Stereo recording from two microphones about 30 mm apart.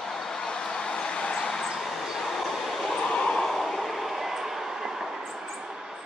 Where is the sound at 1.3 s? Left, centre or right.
Centre.